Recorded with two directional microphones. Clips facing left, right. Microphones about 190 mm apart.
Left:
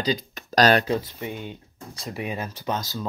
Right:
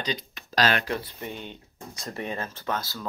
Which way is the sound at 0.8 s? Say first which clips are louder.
Left 5 dB; 15° left (ahead or behind).